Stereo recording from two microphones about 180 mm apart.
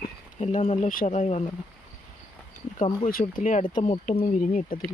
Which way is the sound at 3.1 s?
50° left (ahead or behind).